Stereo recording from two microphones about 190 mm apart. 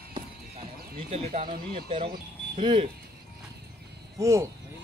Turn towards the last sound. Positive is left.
turn(degrees=-15)  # may be behind; listen again after turning